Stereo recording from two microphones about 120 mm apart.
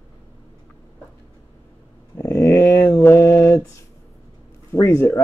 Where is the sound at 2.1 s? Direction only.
25° left (ahead or behind).